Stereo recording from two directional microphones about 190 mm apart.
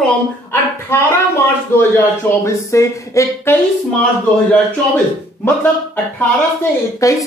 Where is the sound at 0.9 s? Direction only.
15° left (ahead or behind).